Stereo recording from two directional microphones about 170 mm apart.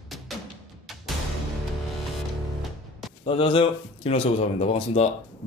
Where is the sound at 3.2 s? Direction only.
30° left (ahead or behind).